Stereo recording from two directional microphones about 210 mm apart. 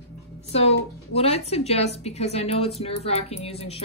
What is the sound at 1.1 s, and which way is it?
A woman's voice, 30° left (ahead or behind).